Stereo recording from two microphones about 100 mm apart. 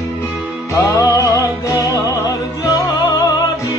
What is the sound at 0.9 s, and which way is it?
Music, 30° left (ahead or behind).